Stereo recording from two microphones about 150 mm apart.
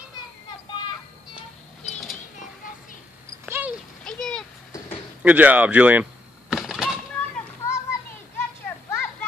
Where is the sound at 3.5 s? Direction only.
15° right (ahead or behind).